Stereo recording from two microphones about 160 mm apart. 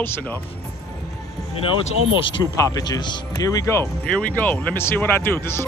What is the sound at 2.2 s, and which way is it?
Speech, 30° left (ahead or behind).